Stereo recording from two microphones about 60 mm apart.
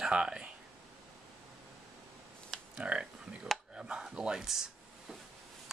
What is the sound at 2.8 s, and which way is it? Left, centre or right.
Speech, centre.